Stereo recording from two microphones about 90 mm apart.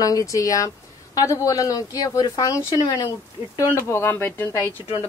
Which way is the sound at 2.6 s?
60° left (ahead or behind).